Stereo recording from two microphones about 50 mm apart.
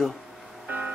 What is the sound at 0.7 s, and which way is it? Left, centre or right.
Music, right.